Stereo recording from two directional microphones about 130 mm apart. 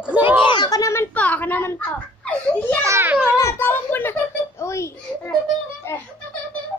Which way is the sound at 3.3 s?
20° left (ahead or behind).